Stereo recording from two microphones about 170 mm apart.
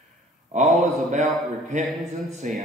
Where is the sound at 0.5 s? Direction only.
45° right (ahead or behind).